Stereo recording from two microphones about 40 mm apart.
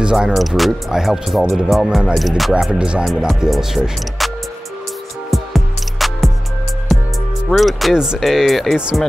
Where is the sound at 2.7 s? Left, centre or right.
Right.